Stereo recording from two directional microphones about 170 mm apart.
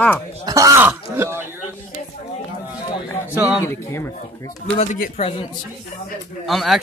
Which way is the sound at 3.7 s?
15° left (ahead or behind).